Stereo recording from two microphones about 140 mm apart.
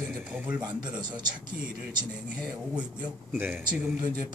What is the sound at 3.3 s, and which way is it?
Speech, 10° right (ahead or behind).